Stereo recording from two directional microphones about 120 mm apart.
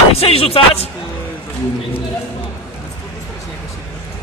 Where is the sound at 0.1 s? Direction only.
55° left (ahead or behind).